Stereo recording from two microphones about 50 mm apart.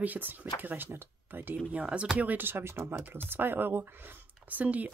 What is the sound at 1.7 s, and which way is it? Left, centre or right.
Speech, right.